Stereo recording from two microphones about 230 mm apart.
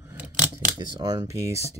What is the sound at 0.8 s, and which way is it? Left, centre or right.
Speech, centre.